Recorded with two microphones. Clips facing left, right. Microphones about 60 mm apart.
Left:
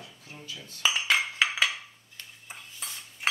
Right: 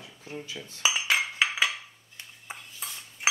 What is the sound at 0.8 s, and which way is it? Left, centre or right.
Dishes, centre.